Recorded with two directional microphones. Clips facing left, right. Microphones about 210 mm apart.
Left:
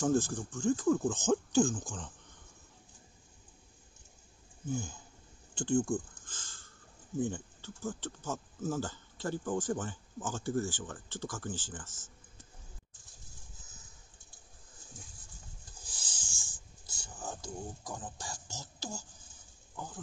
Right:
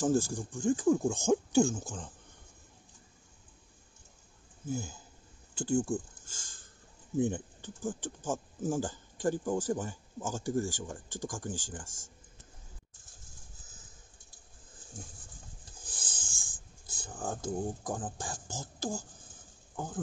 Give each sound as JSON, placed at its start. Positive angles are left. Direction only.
{"t": 0.0, "sound": "speech", "side_deg": -10}
{"t": 4.6, "sound": "speech", "side_deg": -5}
{"t": 15.8, "sound": "writing", "side_deg": -50}